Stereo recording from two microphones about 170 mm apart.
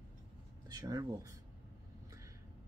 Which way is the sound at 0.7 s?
20° right (ahead or behind).